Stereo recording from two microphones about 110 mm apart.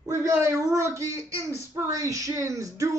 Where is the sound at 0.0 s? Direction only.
25° right (ahead or behind).